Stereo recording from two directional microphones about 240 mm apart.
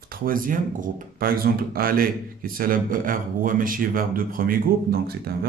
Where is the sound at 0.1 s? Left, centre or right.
Right.